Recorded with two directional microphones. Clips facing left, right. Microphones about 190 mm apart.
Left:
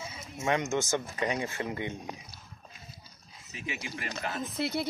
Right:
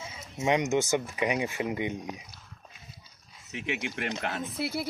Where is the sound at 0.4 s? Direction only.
15° right (ahead or behind).